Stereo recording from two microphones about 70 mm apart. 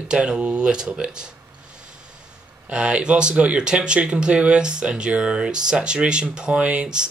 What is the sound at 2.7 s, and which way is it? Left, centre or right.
Speech, centre.